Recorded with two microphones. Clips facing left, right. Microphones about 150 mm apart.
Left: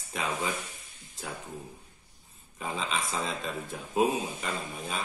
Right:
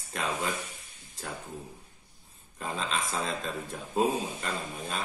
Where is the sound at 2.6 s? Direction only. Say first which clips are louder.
Even; centre (ahead or behind).